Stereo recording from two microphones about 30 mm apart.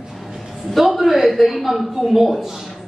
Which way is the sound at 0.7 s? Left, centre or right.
Centre.